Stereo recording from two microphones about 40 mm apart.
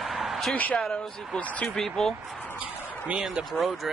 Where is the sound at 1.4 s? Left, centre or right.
Left.